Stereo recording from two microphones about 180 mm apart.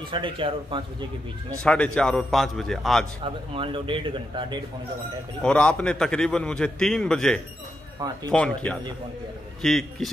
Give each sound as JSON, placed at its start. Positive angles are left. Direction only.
{"t": 0.1, "sound": "speech", "side_deg": -30}
{"t": 1.6, "sound": "a man's voice", "side_deg": 5}
{"t": 3.5, "sound": "speech", "side_deg": -30}
{"t": 5.4, "sound": "a man's voice", "side_deg": 5}